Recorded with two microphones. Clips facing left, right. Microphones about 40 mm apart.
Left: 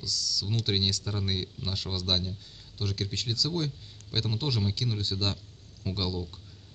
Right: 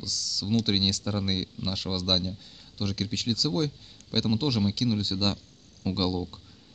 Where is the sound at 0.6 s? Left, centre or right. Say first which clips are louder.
Right 3 dB; right.